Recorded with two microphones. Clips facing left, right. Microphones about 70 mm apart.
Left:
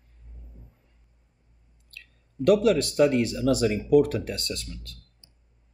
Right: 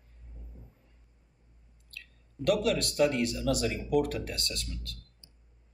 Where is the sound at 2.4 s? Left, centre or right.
Left.